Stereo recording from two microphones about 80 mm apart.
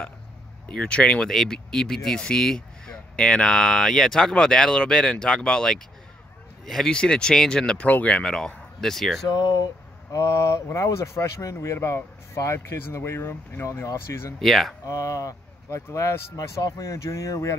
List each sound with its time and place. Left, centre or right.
0.7 s speech: centre
9.3 s speech: left
10.1 s speech: left
14.4 s speech: centre
14.9 s speech: left